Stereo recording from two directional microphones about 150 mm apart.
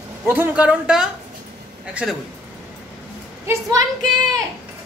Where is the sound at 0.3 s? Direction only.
10° right (ahead or behind).